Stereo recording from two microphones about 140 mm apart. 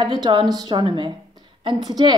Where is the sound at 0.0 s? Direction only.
30° right (ahead or behind).